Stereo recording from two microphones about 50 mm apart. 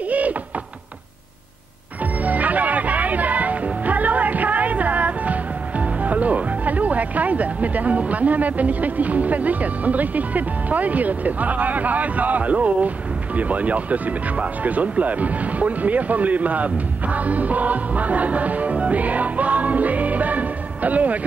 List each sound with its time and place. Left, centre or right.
0.1 s knock: right
2.2 s music: right
13.4 s speech: right